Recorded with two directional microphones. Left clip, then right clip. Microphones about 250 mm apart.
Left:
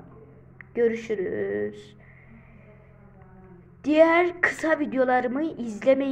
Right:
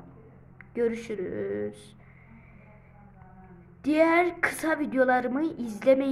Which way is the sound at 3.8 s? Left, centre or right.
Centre.